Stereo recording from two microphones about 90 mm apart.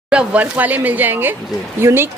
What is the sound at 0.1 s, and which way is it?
A woman's voice, 10° right (ahead or behind).